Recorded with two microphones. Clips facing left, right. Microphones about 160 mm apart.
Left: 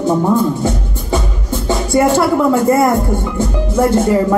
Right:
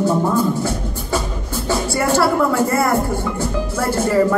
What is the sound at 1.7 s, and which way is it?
Speech, 20° left (ahead or behind).